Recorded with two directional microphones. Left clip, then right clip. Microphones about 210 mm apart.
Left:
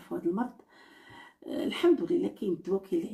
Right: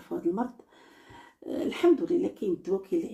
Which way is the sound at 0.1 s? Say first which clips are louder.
Right 2 dB; centre (ahead or behind).